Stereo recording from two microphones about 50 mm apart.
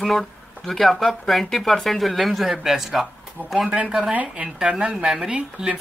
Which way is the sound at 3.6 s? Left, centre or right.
Centre.